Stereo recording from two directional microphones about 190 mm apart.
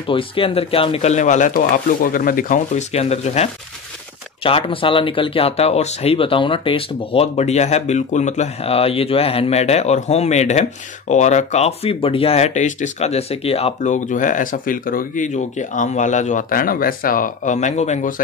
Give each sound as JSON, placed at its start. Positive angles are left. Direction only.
{"t": 0.1, "sound": "speech", "side_deg": 30}